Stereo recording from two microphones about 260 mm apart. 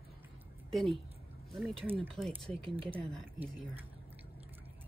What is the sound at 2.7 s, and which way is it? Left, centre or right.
Speech, centre.